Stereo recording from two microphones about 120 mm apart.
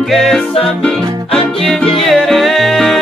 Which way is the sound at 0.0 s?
Centre (ahead or behind).